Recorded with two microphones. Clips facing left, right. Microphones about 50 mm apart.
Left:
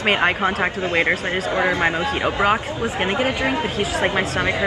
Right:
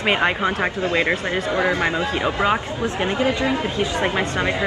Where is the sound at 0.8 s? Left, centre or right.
Left.